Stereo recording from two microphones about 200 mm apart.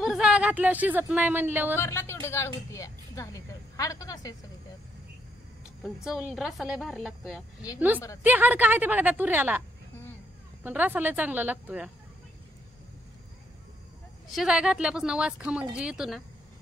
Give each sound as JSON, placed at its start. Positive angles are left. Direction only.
{"t": 0.0, "sound": "speech", "side_deg": -5}
{"t": 1.8, "sound": "speech", "side_deg": 15}
{"t": 5.8, "sound": "a woman's voice", "side_deg": -5}
{"t": 10.6, "sound": "a woman's voice", "side_deg": -10}
{"t": 14.3, "sound": "speech", "side_deg": -5}